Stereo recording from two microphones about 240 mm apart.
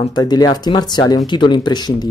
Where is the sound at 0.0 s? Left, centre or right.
Centre.